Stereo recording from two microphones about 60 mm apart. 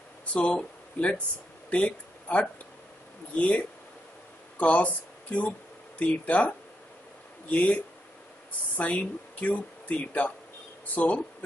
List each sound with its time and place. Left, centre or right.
0.2 s speech: centre